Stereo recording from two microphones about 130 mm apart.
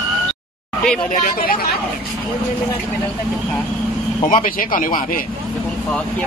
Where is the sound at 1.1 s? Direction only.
90° left.